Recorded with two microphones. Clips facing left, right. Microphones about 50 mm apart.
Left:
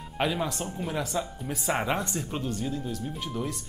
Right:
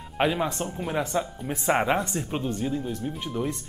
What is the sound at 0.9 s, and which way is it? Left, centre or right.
Speech, right.